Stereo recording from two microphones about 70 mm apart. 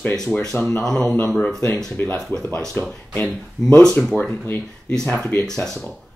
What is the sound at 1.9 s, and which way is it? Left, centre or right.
Speech, left.